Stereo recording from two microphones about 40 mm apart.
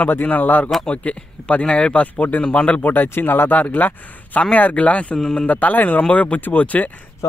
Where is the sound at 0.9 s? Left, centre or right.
Left.